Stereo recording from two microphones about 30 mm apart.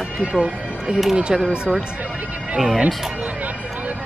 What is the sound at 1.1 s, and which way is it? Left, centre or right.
Speech, right.